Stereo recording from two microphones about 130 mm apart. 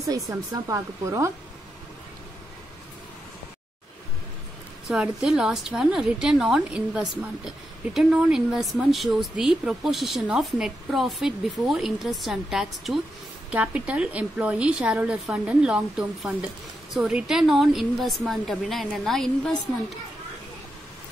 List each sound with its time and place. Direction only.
0.0 s speech: 25° right (ahead or behind)
4.8 s a woman's voice: 5° right (ahead or behind)